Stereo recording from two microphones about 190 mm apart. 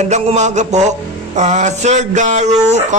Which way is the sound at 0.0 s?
35° right (ahead or behind).